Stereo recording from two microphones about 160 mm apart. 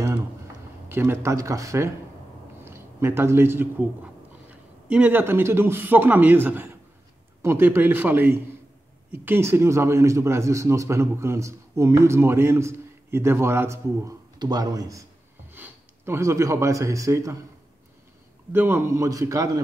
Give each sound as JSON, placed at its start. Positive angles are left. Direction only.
{"t": 0.8, "sound": "a man's voice", "side_deg": -15}
{"t": 18.5, "sound": "a man's voice", "side_deg": -15}